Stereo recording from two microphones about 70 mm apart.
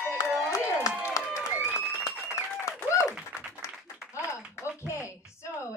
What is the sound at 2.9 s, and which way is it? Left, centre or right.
Applause, left.